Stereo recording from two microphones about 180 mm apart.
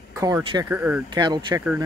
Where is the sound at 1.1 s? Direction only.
25° right (ahead or behind).